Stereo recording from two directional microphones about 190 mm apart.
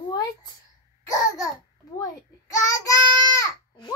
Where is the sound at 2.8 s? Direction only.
15° left (ahead or behind).